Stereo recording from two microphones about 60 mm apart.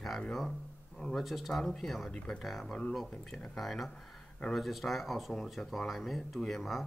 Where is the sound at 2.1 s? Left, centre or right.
Centre.